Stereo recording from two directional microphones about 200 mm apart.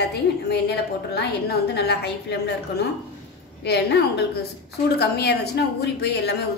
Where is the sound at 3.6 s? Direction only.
55° left (ahead or behind).